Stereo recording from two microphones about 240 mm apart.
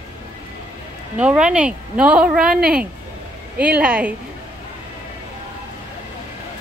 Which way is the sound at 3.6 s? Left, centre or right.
Centre.